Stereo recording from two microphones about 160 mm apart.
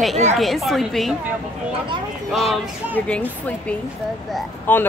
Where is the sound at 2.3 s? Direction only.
Centre (ahead or behind).